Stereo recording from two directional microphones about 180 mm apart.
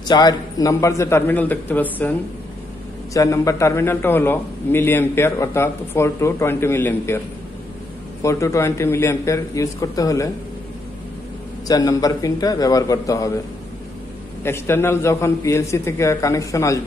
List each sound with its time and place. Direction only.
0.1 s a man's voice: 20° left (ahead or behind)
8.2 s a man's voice: 15° left (ahead or behind)
11.6 s a man's voice: 20° left (ahead or behind)
14.4 s a man's voice: 15° left (ahead or behind)